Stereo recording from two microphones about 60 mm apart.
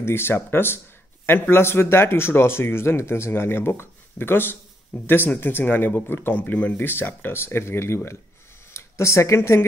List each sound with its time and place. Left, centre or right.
0.0 s speech: left
6.8 s speech: left